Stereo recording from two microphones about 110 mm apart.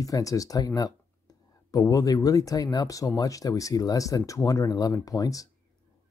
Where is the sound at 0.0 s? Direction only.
30° left (ahead or behind).